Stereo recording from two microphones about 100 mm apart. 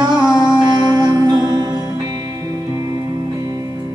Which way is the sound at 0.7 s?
45° right (ahead or behind).